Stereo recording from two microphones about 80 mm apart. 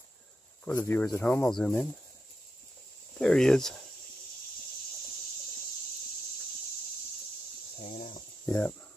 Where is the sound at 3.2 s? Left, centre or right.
Centre.